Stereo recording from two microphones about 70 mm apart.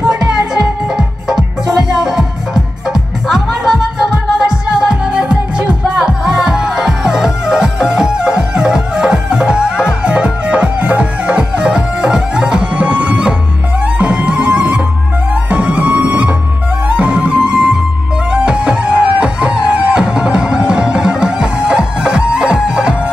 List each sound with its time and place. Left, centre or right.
0.3 s music: centre